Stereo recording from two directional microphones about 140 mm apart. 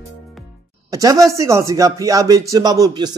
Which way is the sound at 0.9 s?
25° right (ahead or behind).